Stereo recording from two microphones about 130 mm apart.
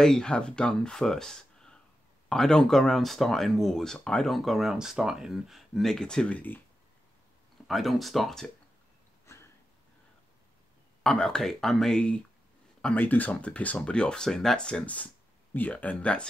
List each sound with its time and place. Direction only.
0.0 s speech: 5° left (ahead or behind)
7.6 s speech: centre (ahead or behind)
9.2 s a sound: 20° left (ahead or behind)
11.0 s speech: 5° left (ahead or behind)